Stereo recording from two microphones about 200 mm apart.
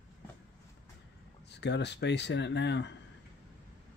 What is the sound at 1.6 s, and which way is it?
Speech, 60° left (ahead or behind).